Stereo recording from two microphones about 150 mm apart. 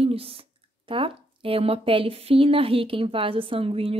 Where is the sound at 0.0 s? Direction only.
40° right (ahead or behind).